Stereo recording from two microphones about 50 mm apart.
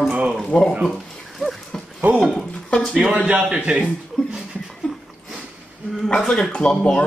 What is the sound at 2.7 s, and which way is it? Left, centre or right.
Speech, centre.